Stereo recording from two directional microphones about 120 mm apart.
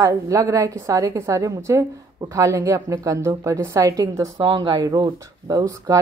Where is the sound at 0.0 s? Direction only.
25° right (ahead or behind).